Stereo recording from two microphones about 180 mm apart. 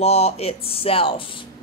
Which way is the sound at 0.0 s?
35° left (ahead or behind).